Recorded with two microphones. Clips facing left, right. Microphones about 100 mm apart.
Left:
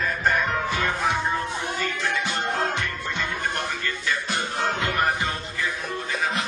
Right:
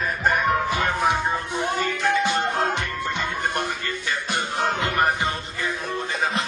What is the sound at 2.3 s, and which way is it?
Music, 15° right (ahead or behind).